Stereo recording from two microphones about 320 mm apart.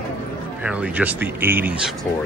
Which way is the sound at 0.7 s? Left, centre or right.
Centre.